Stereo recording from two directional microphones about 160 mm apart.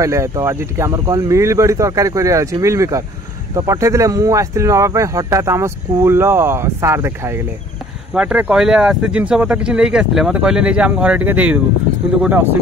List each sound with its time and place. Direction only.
0.0 s speech: 20° right (ahead or behind)